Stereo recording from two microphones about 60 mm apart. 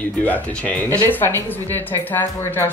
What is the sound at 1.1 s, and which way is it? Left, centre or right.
A woman's voice, left.